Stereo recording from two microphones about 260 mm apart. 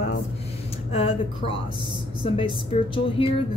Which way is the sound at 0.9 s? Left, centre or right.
Left.